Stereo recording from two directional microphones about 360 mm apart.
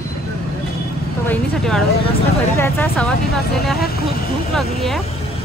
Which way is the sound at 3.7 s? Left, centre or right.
Left.